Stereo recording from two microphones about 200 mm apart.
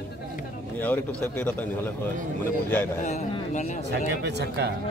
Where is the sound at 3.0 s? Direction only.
35° left (ahead or behind).